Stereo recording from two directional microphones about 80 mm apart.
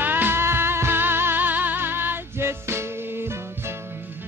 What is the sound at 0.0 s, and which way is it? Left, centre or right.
Music, right.